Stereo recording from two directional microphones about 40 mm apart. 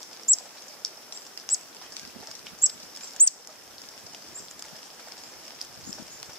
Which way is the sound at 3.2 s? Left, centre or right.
Left.